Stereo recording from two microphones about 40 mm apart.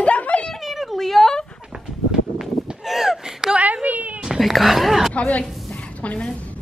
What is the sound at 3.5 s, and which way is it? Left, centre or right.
Speech, right.